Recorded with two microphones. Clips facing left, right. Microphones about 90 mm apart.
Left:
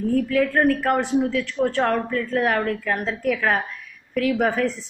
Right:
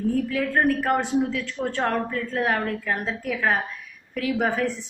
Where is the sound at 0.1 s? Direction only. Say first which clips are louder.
Left 7 dB; 25° right (ahead or behind).